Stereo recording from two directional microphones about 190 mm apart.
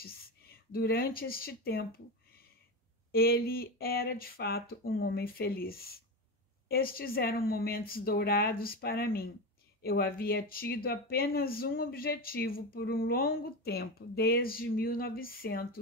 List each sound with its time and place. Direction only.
0.7 s speech: 50° left (ahead or behind)
3.1 s speech: 50° left (ahead or behind)